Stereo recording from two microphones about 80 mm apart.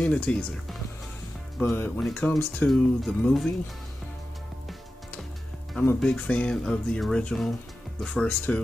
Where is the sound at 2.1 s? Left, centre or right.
Centre.